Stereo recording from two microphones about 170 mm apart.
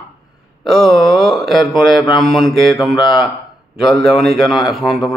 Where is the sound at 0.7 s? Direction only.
Centre (ahead or behind).